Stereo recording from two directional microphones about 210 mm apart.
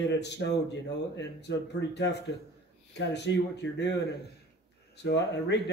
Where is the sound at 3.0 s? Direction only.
55° left (ahead or behind).